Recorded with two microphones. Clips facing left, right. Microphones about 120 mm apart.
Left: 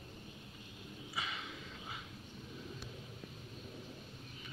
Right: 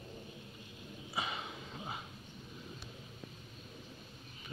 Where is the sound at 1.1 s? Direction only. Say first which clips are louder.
Right 4 dB; 30° right (ahead or behind).